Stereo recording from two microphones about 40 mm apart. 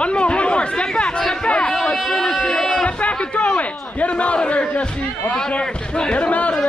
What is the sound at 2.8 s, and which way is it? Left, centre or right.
A man's voice, left.